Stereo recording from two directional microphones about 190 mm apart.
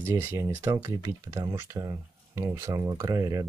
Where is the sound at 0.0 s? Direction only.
10° right (ahead or behind).